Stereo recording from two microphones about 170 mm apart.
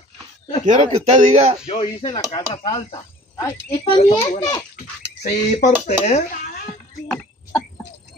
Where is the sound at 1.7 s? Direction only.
35° left (ahead or behind).